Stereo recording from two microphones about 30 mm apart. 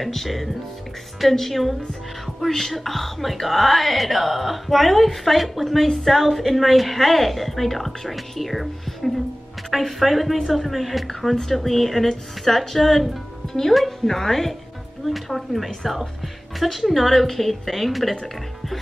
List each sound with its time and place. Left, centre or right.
0.0 s speech: centre
11.1 s a woman's voice: centre
13.5 s speech: centre
13.7 s a woman's voice: centre
15.0 s speech: centre